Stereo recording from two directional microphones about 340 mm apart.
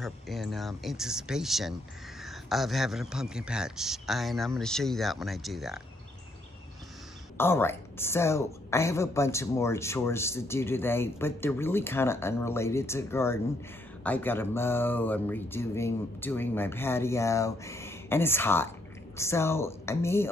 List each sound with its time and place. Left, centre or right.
0.0 s a man's voice: centre
7.3 s a woman's voice: centre